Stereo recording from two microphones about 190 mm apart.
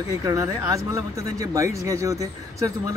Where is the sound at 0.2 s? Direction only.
15° right (ahead or behind).